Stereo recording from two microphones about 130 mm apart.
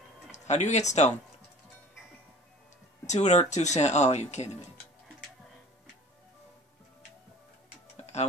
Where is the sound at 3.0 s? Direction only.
60° left (ahead or behind).